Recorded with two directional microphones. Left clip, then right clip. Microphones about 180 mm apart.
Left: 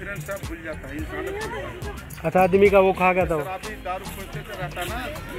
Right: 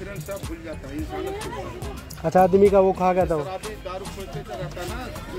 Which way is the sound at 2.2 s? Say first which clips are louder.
Right 1 dB; 15° right (ahead or behind).